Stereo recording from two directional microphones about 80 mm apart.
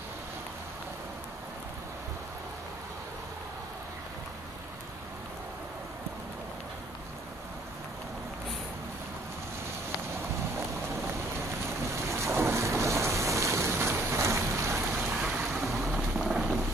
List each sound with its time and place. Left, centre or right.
11.1 s vehicle: right
15.1 s boat: centre